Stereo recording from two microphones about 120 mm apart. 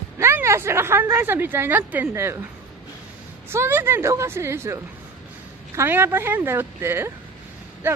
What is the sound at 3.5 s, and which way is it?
A woman's voice, 20° right (ahead or behind).